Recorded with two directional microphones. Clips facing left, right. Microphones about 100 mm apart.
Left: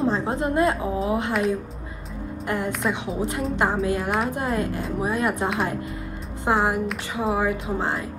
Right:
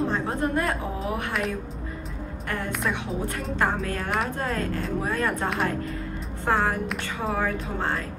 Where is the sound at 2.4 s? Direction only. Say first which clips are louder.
Left 5 dB; 20° left (ahead or behind).